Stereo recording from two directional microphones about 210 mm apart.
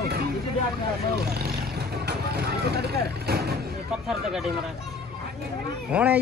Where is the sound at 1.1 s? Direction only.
50° right (ahead or behind).